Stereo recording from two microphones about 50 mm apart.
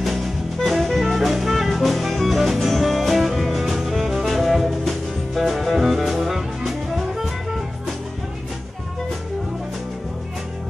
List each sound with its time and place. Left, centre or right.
0.0 s jazz: centre